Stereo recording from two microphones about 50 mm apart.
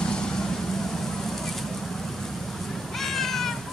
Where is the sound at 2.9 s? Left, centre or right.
Centre.